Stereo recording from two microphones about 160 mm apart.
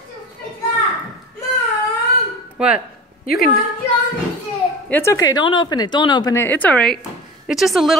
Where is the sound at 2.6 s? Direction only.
5° right (ahead or behind).